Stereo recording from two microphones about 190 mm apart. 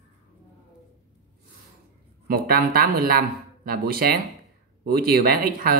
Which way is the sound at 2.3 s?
50° right (ahead or behind).